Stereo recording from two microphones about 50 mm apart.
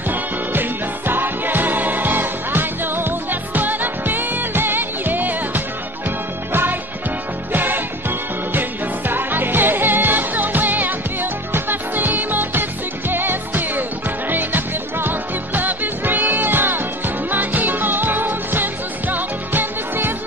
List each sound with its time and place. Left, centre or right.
0.1 s music: right